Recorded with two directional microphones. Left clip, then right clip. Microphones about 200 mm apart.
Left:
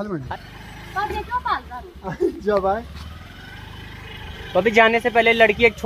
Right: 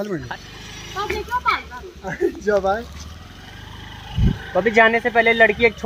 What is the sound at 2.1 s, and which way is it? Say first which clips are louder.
Speech: right 1 dB; 40° left (ahead or behind).